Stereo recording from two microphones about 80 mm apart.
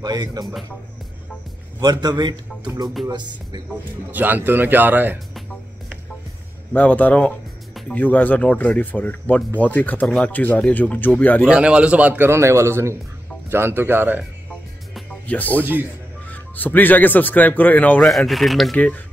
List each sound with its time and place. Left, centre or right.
0.0 s a man's voice: right
1.8 s a man's voice: right
4.1 s speech: right
6.7 s speech: centre
11.4 s a man's voice: centre
12.3 s speech: right
15.2 s speech: centre
15.6 s speech: right
16.3 s speech: left
18.0 s speech: centre